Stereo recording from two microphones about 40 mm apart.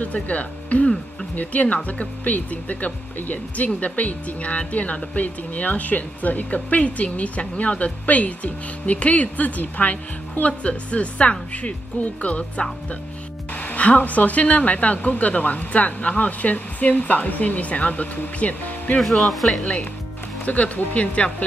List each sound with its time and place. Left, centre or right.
0.0 s speech: left
18.9 s speech: centre
19.6 s speech: left